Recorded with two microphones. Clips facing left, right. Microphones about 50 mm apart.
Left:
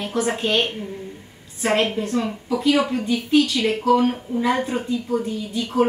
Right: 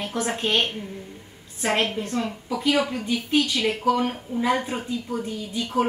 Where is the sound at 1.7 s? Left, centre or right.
Centre.